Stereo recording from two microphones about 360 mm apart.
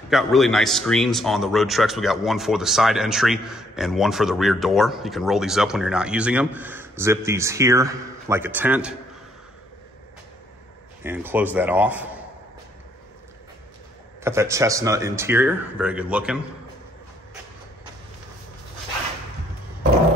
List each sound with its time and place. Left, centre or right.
0.1 s speech: centre
11.1 s speech: centre
14.2 s speech: centre